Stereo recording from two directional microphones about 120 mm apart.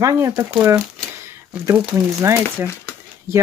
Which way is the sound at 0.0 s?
30° right (ahead or behind).